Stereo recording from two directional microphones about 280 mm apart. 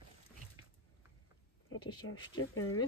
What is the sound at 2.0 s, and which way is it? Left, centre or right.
Speech, left.